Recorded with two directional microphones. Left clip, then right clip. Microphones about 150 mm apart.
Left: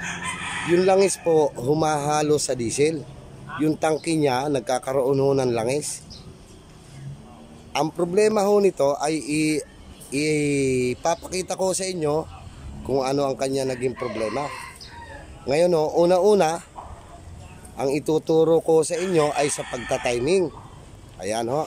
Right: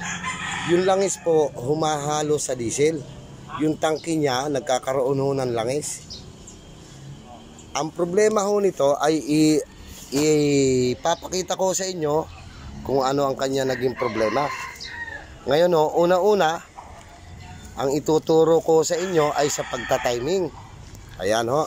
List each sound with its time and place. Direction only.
0.7 s speech: 10° left (ahead or behind)
7.7 s speech: 10° left (ahead or behind)
17.7 s speech: 15° left (ahead or behind)